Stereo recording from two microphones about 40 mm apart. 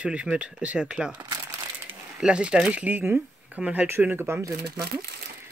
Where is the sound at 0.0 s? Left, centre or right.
Right.